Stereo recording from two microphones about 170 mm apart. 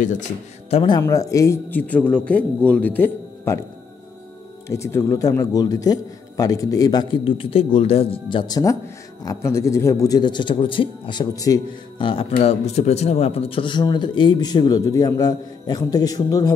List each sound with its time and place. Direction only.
0.7 s speech: 30° left (ahead or behind); by 3.6 s 15° left (ahead or behind)
4.6 s a man's voice: 15° left (ahead or behind)